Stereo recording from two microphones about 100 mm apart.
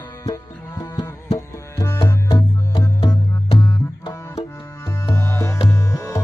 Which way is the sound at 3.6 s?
40° left (ahead or behind).